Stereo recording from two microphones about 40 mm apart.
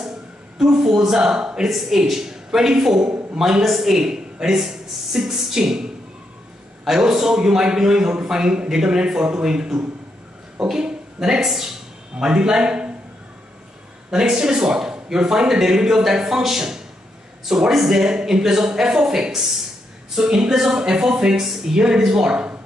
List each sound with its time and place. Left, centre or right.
0.6 s a man's voice: centre
7.0 s a man's voice: centre
12.2 s a man's voice: right
14.1 s speech: centre